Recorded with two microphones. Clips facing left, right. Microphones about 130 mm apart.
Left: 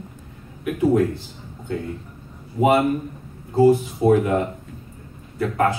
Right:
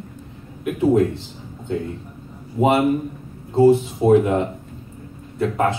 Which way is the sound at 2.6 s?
15° right (ahead or behind).